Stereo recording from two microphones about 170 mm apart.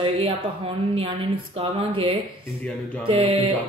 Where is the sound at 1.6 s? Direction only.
35° right (ahead or behind).